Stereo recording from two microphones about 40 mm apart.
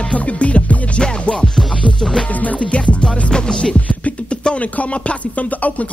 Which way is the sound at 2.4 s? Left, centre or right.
Left.